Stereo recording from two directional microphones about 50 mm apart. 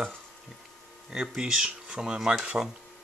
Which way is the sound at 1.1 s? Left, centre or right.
Centre.